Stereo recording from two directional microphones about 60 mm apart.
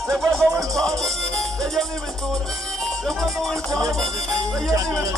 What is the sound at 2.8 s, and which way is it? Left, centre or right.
Speech, centre.